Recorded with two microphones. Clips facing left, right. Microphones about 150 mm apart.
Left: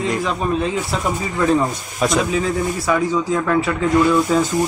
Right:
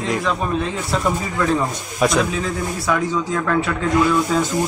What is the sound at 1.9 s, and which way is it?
Speech, centre (ahead or behind).